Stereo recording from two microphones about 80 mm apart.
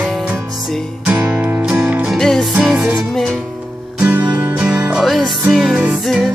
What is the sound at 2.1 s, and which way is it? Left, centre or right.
Music, centre.